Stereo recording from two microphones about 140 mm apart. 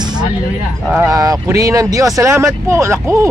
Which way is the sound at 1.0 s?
25° right (ahead or behind).